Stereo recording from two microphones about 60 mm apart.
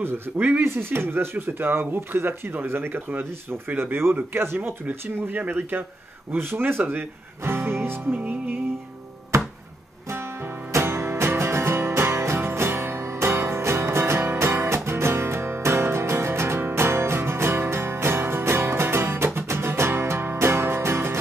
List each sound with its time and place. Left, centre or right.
0.4 s speech: right
8.2 s music: right
9.3 s music: right
10.7 s music: right